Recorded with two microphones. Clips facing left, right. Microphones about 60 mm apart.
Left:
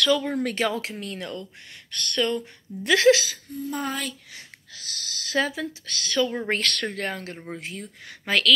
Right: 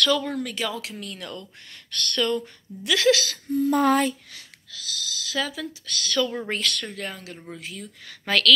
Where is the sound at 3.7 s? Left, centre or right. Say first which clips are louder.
Right 10 dB; right.